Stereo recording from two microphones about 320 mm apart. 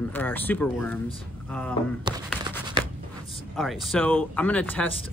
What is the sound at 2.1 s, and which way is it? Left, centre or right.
Speech, centre.